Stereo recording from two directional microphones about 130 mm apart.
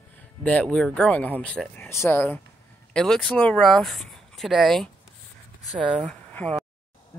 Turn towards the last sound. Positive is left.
turn(degrees=10)  # may be behind; listen again after turning